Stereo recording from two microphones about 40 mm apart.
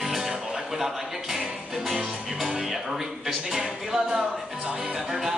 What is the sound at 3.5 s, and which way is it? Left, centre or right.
Music, centre.